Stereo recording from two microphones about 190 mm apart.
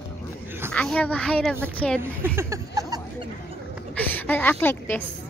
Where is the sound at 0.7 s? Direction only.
5° left (ahead or behind).